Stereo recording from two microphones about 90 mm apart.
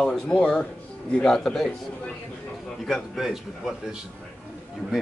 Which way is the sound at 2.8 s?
Centre (ahead or behind).